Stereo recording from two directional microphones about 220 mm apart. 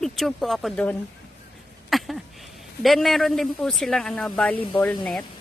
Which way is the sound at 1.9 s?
Centre (ahead or behind).